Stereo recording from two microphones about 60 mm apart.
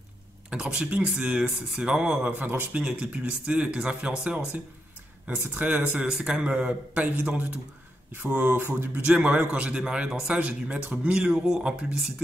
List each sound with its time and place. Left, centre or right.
0.5 s a man's voice: centre
2.2 s speech: right
5.9 s a man's voice: centre
8.2 s speech: right
9.0 s a man's voice: right